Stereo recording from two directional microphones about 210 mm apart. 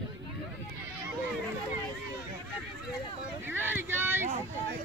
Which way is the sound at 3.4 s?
10° right (ahead or behind).